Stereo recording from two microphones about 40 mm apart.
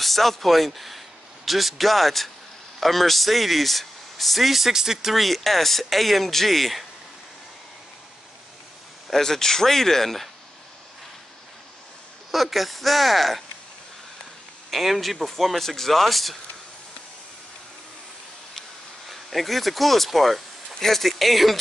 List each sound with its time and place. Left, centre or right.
0.0 s speech: centre
9.1 s speech: centre
12.3 s speech: centre
14.7 s speech: centre
19.0 s speech: centre